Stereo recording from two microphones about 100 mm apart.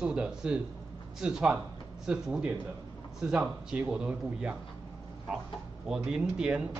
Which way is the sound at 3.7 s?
10° right (ahead or behind).